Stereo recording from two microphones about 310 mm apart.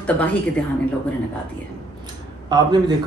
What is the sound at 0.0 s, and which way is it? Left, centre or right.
Speech, centre.